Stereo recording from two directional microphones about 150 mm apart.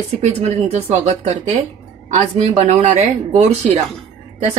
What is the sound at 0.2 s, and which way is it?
A woman's voice, 45° right (ahead or behind).